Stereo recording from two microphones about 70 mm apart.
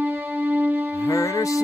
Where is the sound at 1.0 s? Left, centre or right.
Left.